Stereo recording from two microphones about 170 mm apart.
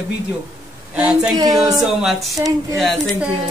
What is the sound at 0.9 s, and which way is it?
Speech, 5° right (ahead or behind).